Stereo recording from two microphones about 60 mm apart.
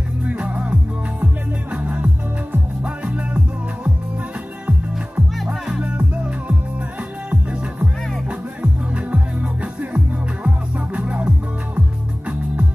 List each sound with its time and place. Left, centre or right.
0.3 s music: right
5.5 s music: centre
8.9 s music: right